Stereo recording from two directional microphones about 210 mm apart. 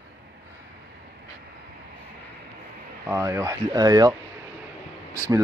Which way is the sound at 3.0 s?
15° right (ahead or behind).